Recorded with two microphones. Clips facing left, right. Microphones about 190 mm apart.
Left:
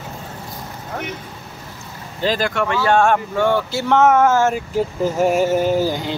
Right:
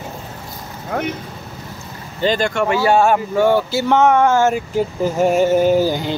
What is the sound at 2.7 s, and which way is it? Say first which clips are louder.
Speech: right 1 dB; 10° right (ahead or behind).